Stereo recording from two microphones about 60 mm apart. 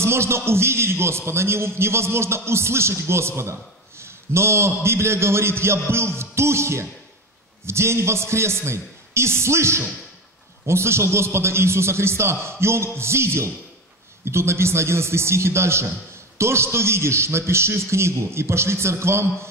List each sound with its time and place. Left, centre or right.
0.0 s a man's voice: right